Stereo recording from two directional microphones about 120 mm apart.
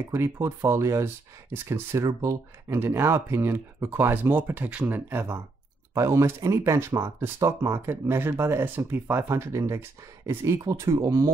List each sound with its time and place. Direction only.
0.1 s speech: 20° right (ahead or behind)